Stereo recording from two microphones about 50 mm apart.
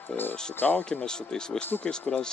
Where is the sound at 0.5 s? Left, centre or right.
Left.